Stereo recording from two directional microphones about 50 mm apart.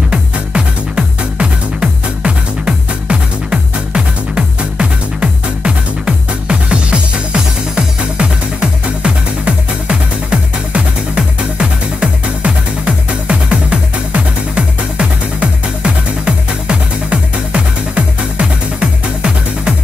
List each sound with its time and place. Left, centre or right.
0.1 s music: centre